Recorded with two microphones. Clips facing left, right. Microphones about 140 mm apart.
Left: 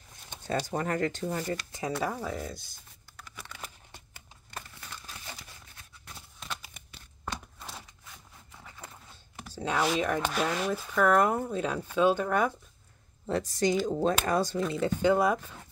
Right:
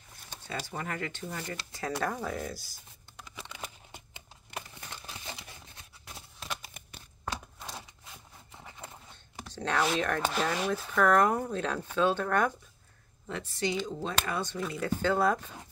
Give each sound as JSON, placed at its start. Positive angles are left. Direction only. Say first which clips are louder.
{"t": 0.5, "sound": "speech", "louder": "left 7 dB", "side_deg": 40}
{"t": 2.0, "sound": "speech", "louder": "right 1 dB", "side_deg": 5}
{"t": 3.2, "sound": "a sound", "louder": "right 1 dB", "side_deg": -20}
{"t": 4.8, "sound": "crumpling", "louder": "right 1 dB", "side_deg": -20}
{"t": 6.6, "sound": "a sound", "louder": "right 2 dB", "side_deg": -45}
{"t": 7.7, "sound": "a sound", "louder": "right 2 dB", "side_deg": -20}
{"t": 9.1, "sound": "chopping", "louder": "even", "side_deg": 10}
{"t": 10.4, "sound": "speech", "louder": "left 1 dB", "side_deg": 0}
{"t": 13.3, "sound": "speech", "louder": "left 6 dB", "side_deg": 40}
{"t": 14.7, "sound": "speech", "louder": "left 3 dB", "side_deg": 20}